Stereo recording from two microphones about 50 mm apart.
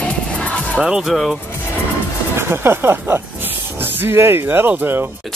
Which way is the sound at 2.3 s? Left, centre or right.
Right.